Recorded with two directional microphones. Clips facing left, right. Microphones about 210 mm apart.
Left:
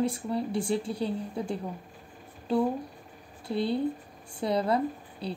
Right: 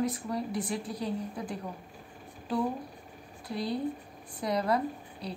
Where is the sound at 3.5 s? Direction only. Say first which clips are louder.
Left 4 dB; 30° left (ahead or behind).